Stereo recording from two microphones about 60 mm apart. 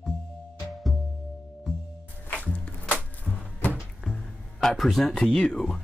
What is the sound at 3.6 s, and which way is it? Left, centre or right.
Music, left.